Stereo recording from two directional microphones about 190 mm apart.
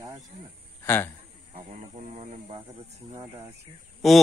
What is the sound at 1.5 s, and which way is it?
Speech, 35° right (ahead or behind).